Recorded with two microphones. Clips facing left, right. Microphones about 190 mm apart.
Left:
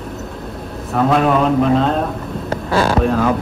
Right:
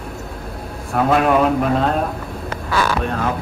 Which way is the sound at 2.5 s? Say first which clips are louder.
Left 4 dB; 30° left (ahead or behind).